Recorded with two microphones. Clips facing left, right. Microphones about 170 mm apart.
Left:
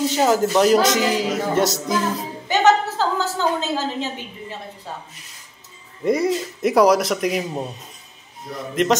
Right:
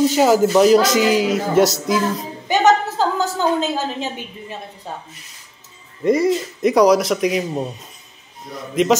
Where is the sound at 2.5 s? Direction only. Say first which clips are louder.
Right 1 dB; 15° right (ahead or behind).